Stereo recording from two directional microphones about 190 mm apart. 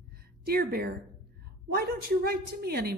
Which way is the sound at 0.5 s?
50° right (ahead or behind).